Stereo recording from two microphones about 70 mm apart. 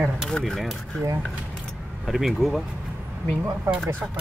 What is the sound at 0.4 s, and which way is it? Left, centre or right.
Speech, centre.